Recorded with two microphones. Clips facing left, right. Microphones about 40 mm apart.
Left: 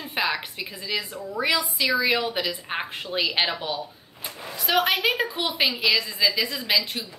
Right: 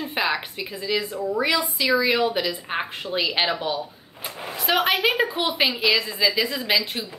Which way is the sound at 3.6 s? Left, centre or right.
Centre.